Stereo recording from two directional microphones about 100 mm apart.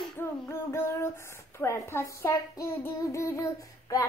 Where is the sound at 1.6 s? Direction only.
25° left (ahead or behind).